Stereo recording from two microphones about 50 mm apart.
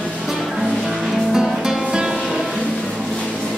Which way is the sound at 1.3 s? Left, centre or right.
Centre.